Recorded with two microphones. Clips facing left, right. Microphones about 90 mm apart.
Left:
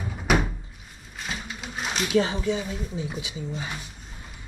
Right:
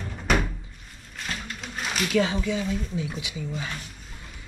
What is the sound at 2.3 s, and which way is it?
Speech, 20° left (ahead or behind).